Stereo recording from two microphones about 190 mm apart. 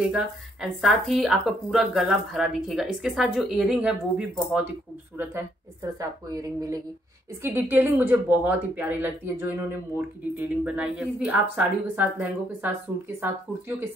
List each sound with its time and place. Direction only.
0.0 s a woman's voice: centre (ahead or behind)
10.6 s speech: 5° right (ahead or behind)